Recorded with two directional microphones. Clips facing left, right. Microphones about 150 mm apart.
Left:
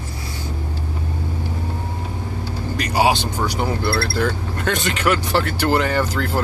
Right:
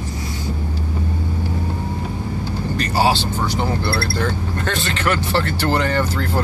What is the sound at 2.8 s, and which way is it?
Speech, 10° left (ahead or behind).